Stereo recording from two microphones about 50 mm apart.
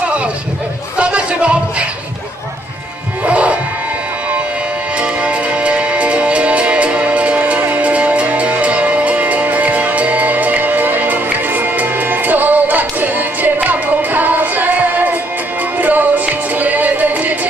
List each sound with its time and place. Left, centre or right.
0.9 s a sound: right
3.3 s music: right
5.0 s music: right